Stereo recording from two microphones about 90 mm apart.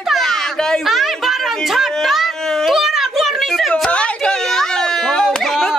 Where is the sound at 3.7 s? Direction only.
15° left (ahead or behind).